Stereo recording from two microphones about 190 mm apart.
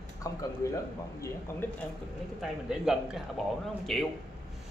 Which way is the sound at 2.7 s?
5° right (ahead or behind).